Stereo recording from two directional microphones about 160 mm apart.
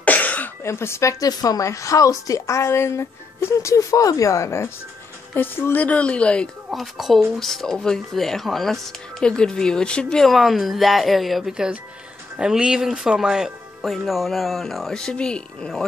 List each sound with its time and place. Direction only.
0.0 s speech: 10° left (ahead or behind)